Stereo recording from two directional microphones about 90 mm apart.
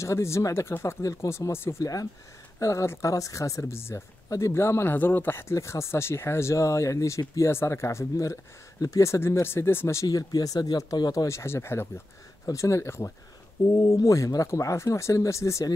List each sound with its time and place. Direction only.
0.0 s speech: 30° left (ahead or behind)
10.0 s speech: 45° left (ahead or behind)
13.7 s speech: 40° left (ahead or behind)